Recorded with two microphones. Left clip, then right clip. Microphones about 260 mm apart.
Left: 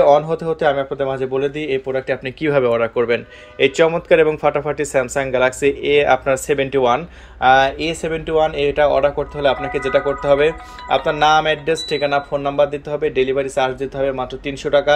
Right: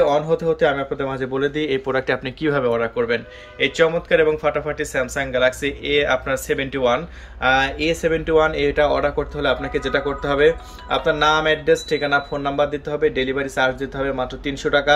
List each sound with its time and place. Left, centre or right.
0.0 s speech: centre
2.4 s speech: centre